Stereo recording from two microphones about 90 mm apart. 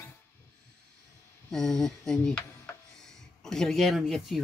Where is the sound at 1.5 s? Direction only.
5° left (ahead or behind).